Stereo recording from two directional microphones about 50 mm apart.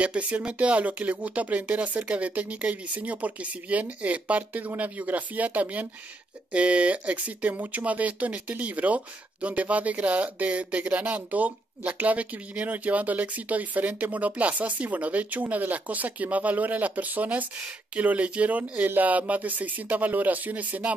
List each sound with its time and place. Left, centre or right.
0.0 s speech: right